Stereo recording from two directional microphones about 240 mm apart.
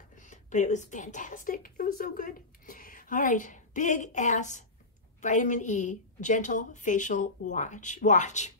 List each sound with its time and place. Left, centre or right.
0.1 s a woman's voice: left